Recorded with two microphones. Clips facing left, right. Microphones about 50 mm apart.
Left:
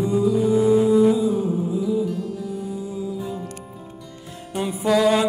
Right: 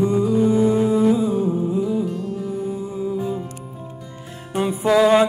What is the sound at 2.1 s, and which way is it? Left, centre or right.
Music, right.